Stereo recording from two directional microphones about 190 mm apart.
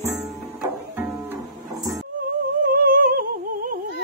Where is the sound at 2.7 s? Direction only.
50° right (ahead or behind).